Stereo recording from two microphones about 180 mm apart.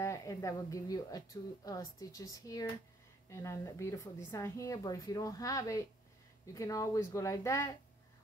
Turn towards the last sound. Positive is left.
turn(degrees=15)  # may be behind; listen again after turning